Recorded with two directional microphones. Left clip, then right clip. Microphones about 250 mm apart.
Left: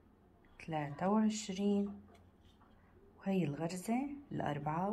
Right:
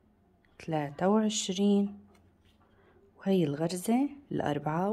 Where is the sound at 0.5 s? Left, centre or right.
Right.